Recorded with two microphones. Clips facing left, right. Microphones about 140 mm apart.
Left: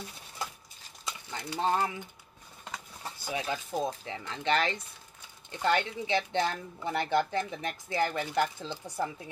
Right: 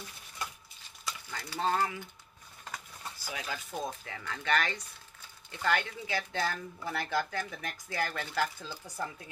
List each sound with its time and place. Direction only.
1.0 s speech: 20° left (ahead or behind)